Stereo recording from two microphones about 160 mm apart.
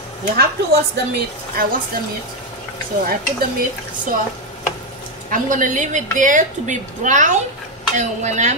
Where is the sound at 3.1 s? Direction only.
65° right (ahead or behind).